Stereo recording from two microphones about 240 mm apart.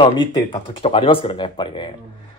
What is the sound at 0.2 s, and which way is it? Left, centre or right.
Speech, centre.